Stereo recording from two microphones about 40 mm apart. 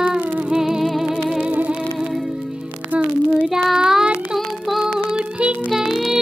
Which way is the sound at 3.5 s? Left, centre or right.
Centre.